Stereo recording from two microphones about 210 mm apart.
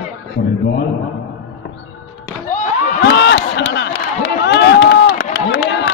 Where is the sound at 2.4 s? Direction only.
35° left (ahead or behind).